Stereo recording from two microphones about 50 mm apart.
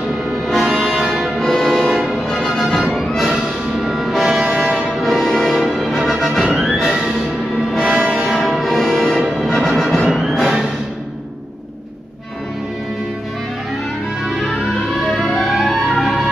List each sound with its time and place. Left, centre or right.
0.7 s music: centre
1.4 s music: centre
8.0 s music: right
8.3 s music: centre
10.0 s music: centre
14.3 s music: centre